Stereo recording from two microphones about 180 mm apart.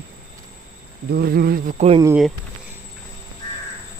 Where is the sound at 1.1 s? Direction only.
60° right (ahead or behind).